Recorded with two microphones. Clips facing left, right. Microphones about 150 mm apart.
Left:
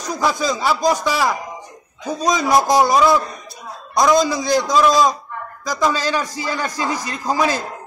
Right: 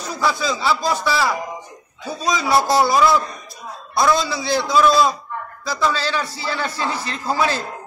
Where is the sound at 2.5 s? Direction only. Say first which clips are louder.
Left 1 dB; 15° left (ahead or behind).